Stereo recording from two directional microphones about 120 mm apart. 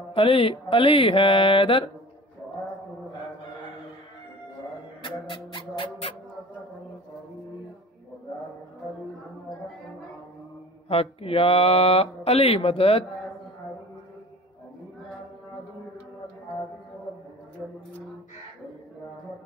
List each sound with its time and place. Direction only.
0.1 s speech: 45° left (ahead or behind)
5.0 s music: 45° left (ahead or behind)
10.9 s speech: 50° left (ahead or behind)